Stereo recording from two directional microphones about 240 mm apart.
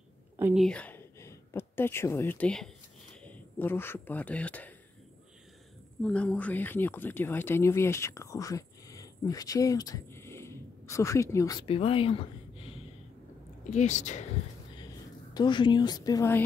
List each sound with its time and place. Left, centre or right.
0.4 s speech: centre
0.7 s speech: centre
6.0 s speech: centre; by 14.2 s left
15.3 s a woman's voice: centre